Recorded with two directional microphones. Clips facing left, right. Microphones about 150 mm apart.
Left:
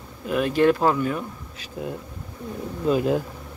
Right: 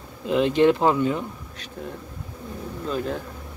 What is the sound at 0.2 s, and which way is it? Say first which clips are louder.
A man's voice: right 2 dB; 20° right (ahead or behind).